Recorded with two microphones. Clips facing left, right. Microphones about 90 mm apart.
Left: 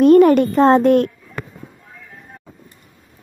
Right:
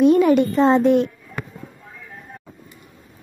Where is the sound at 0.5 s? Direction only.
45° left (ahead or behind).